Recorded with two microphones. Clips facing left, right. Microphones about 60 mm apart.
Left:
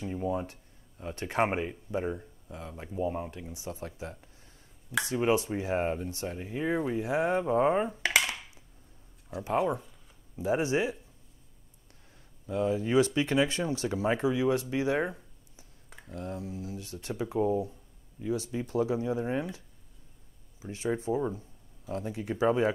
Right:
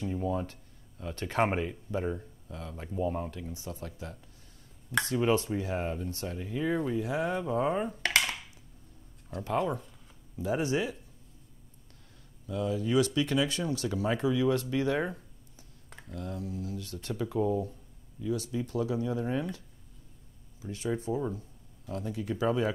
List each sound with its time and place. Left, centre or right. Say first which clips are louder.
0.0 s speech: even; centre
7.9 s a sound: left 1 dB; centre
9.4 s speech: left 2 dB; centre
12.4 s speech: left 2 dB; left
16.1 s speech: left 1 dB; left
20.6 s speech: left 2 dB; left